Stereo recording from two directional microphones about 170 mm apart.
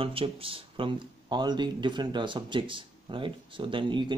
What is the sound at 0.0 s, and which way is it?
Speech, 35° right (ahead or behind).